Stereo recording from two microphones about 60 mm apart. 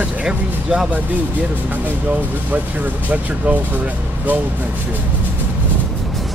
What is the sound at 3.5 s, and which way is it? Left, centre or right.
Speech, right.